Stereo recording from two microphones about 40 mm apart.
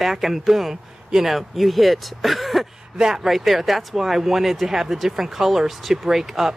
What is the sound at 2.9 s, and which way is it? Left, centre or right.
Speech, centre.